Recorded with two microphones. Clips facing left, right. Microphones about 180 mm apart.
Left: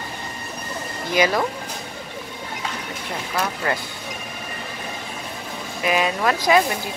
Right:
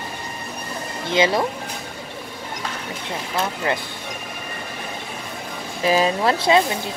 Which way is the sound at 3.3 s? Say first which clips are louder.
Right 1 dB; 25° right (ahead or behind).